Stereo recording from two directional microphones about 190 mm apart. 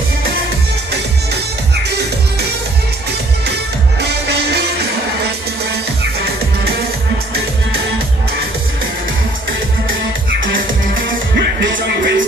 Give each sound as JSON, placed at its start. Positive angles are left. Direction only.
{"t": 4.0, "sound": "music", "side_deg": -60}
{"t": 11.3, "sound": "music", "side_deg": -65}